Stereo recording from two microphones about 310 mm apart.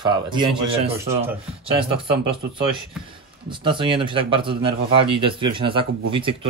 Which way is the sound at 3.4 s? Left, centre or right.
Centre.